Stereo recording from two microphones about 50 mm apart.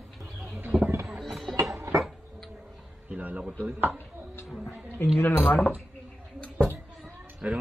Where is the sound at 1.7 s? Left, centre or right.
Right.